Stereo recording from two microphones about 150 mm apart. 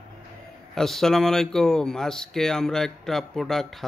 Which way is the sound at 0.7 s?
5° left (ahead or behind).